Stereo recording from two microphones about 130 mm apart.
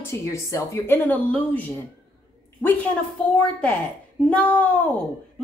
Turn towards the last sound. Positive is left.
turn(degrees=10)  # may be behind; listen again after turning